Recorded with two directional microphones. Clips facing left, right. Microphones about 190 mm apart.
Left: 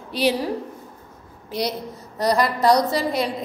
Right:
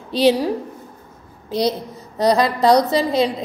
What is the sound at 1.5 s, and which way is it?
A woman's voice, 20° right (ahead or behind).